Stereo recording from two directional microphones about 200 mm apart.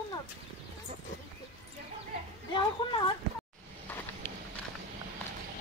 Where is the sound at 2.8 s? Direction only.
25° left (ahead or behind).